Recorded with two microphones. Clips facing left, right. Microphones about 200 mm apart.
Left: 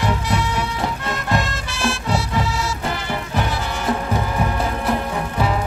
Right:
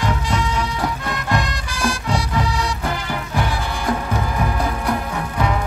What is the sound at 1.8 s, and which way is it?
Music, centre (ahead or behind).